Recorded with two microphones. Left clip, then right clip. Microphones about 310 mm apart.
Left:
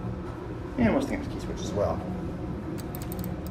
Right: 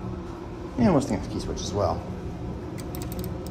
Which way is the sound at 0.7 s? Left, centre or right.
Centre.